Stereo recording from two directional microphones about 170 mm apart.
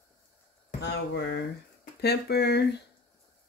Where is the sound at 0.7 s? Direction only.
85° left.